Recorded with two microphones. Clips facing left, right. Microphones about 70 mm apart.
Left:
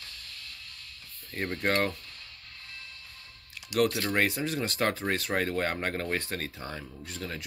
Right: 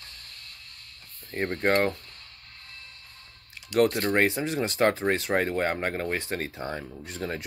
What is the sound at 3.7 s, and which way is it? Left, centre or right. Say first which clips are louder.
Speech: right 4 dB; right.